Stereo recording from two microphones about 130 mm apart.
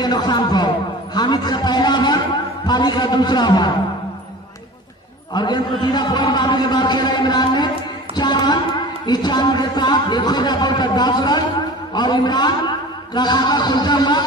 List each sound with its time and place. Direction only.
0.0 s speech: 30° left (ahead or behind)
1.1 s a sound: 35° left (ahead or behind)
5.3 s a man's voice: 35° left (ahead or behind)